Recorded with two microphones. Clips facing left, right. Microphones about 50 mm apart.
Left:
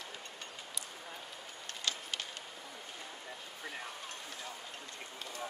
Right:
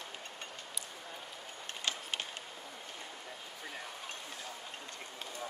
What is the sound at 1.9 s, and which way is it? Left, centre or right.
Vehicle, right.